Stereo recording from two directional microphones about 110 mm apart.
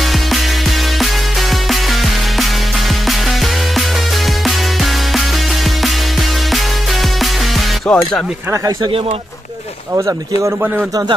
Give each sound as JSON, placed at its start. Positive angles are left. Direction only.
{"t": 7.9, "sound": "speech", "side_deg": 10}
{"t": 9.9, "sound": "speech", "side_deg": -30}